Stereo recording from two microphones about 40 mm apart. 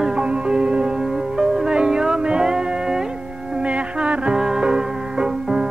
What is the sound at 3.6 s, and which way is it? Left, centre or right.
Music, right.